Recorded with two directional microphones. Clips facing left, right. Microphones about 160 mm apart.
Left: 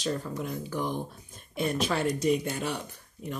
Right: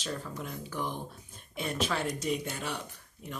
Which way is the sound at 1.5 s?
40° left (ahead or behind).